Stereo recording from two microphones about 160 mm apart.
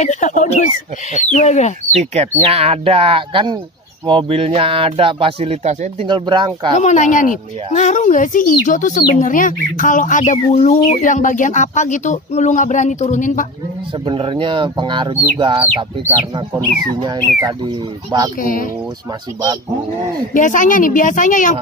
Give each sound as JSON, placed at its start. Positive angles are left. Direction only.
{"t": 0.0, "sound": "speech", "side_deg": 50}
{"t": 2.0, "sound": "speech", "side_deg": -40}
{"t": 6.0, "sound": "speech", "side_deg": -30}
{"t": 6.8, "sound": "speech", "side_deg": 50}
{"t": 14.0, "sound": "speech", "side_deg": -35}
{"t": 18.4, "sound": "a woman's voice", "side_deg": 60}
{"t": 20.3, "sound": "a woman's voice", "side_deg": 55}